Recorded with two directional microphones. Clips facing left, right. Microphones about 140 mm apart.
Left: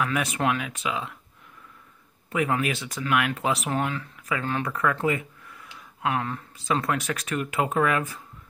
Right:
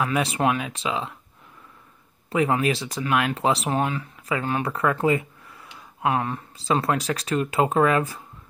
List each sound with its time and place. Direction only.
0.0 s speech: 30° right (ahead or behind)
2.2 s a sound: 30° right (ahead or behind)
2.6 s speech: 35° right (ahead or behind)
3.7 s speech: 20° right (ahead or behind)
4.6 s speech: 30° right (ahead or behind)